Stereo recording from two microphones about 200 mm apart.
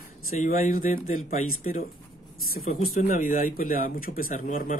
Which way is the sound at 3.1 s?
45° left (ahead or behind).